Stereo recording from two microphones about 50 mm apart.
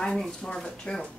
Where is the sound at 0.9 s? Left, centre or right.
Centre.